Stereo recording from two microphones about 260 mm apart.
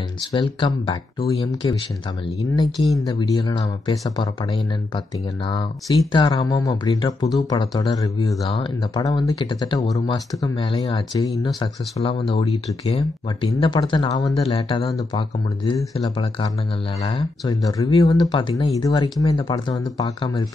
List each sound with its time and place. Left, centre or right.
0.3 s speech: centre
2.8 s speech: centre
3.3 s speech: centre